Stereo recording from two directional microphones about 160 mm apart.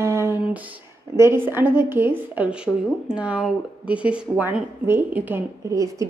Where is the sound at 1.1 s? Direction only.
15° right (ahead or behind).